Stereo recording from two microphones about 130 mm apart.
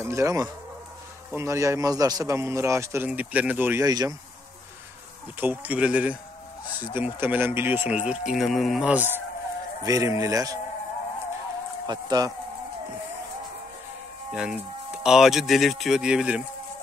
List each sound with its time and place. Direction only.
0.0 s a man's voice: 20° right (ahead or behind)
3.8 s a man's voice: 30° right (ahead or behind)
5.4 s speech: 15° right (ahead or behind)
9.8 s a man's voice: 25° right (ahead or behind)
11.9 s speech: 35° right (ahead or behind)
14.3 s speech: 5° right (ahead or behind)